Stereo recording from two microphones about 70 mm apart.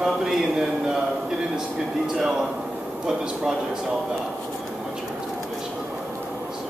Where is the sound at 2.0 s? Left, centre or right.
Centre.